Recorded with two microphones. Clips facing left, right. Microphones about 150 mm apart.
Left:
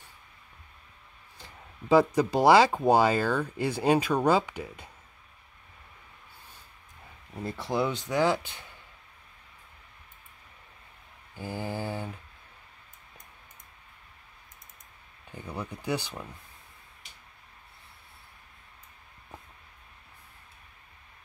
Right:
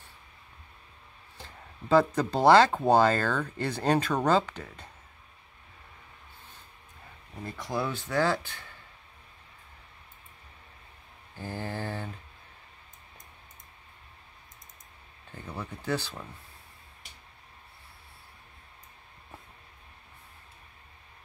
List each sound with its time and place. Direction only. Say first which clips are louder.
1.9 s speech: left 2 dB; 10° left (ahead or behind)
7.4 s speech: left 3 dB; 30° left (ahead or behind)
11.3 s speech: left 2 dB; 10° left (ahead or behind)
15.3 s speech: left 2 dB; 10° left (ahead or behind)